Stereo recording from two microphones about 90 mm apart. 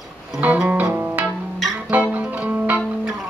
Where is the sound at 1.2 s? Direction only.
Centre (ahead or behind).